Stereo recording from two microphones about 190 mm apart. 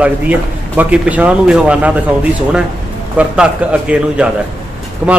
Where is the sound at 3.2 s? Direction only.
5° right (ahead or behind).